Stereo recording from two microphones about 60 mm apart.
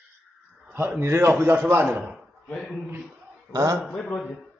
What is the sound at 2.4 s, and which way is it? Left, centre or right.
Speech, centre.